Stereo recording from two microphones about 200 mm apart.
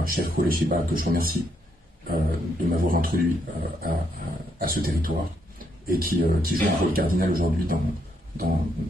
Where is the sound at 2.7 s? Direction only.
45° right (ahead or behind).